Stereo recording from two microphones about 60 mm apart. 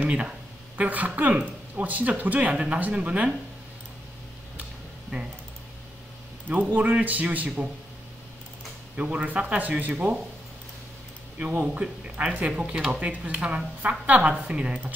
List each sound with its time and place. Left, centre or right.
0.0 s a sound: centre
0.7 s speech: right
2.5 s speech: centre
5.1 s speech: right
6.5 s speech: right
8.9 s speech: right
11.6 s speech: right